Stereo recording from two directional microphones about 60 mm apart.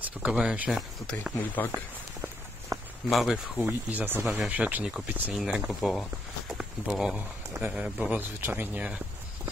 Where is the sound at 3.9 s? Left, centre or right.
Right.